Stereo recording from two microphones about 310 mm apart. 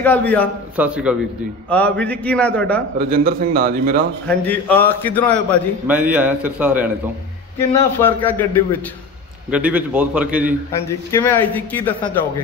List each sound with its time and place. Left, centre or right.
0.0 s a man's voice: centre
3.0 s a man's voice: right
4.3 s a man's voice: centre
7.7 s a man's voice: centre
9.5 s a man's voice: centre
10.9 s a man's voice: centre